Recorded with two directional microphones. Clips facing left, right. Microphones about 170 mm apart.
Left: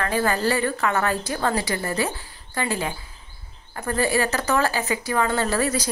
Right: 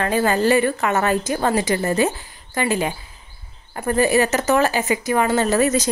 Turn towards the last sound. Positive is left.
turn(degrees=-20)  # may be behind; listen again after turning